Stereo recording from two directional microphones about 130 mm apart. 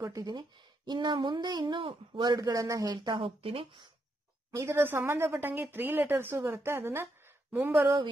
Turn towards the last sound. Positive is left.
turn(degrees=-20)  # may be behind; listen again after turning